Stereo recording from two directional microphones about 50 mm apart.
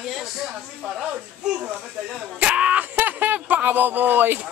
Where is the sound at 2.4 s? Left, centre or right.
Right.